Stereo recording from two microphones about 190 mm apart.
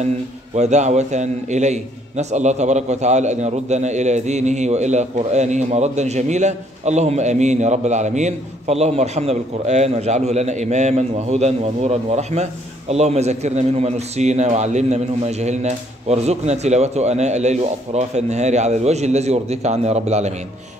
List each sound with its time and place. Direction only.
0.6 s a man's voice: 35° right (ahead or behind)